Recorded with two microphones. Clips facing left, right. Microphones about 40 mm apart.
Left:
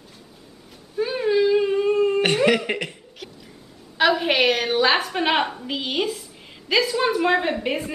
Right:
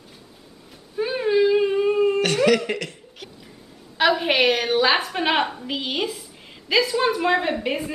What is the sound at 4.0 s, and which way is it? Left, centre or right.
Speech, centre.